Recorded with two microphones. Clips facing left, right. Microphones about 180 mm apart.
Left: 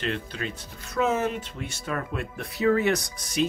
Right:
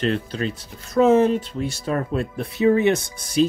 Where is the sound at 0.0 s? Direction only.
35° right (ahead or behind).